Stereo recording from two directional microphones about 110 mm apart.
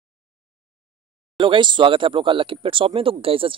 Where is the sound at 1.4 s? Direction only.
45° right (ahead or behind).